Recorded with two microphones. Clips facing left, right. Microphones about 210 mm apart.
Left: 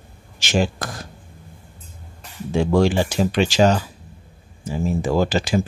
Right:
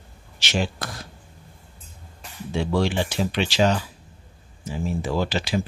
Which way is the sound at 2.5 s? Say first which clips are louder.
Left 6 dB; 45° left (ahead or behind).